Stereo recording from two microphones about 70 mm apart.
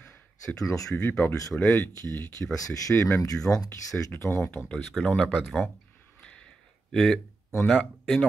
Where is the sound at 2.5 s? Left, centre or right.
Left.